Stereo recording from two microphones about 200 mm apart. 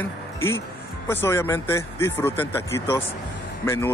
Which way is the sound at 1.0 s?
10° left (ahead or behind).